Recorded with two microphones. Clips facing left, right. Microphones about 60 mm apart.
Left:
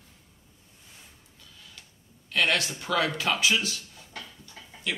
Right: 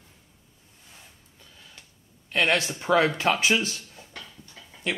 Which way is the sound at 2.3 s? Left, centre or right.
Right.